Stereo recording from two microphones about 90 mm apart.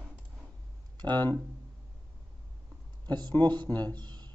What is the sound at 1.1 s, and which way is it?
Speech, 20° left (ahead or behind).